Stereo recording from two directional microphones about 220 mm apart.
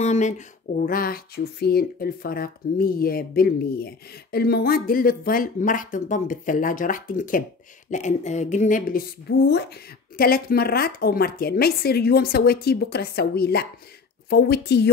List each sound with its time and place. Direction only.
0.0 s speech: 30° left (ahead or behind)
9.5 s a woman's voice: 50° left (ahead or behind)